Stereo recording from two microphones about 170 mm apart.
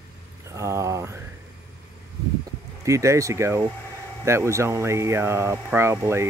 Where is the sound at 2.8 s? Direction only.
15° right (ahead or behind).